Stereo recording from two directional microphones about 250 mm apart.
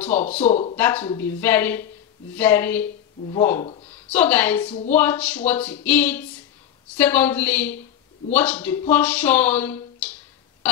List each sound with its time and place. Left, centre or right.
0.0 s speech: centre
0.5 s speech: left
0.7 s speech: centre
3.9 s speech: centre